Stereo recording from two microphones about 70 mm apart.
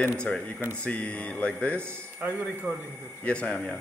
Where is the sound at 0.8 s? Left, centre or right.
Left.